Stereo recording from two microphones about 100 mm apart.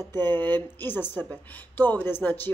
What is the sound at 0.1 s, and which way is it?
A woman's voice, 20° left (ahead or behind).